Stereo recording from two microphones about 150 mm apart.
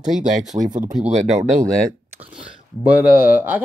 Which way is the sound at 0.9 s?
50° right (ahead or behind).